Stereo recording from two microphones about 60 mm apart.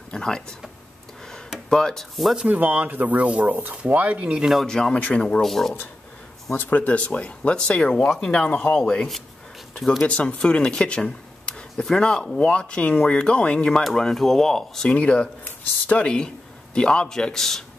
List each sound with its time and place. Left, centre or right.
0.1 s speech: centre
1.7 s speech: centre
2.5 s speech: right
4.6 s speech: centre
5.4 s speech: centre
6.5 s speech: left
8.8 s speech: centre
15.0 s speech: left